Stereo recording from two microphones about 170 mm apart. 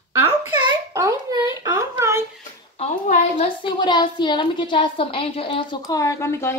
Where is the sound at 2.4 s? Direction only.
50° left (ahead or behind).